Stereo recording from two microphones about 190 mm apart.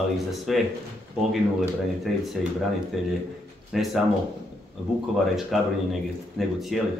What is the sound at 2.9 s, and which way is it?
Speech, centre (ahead or behind).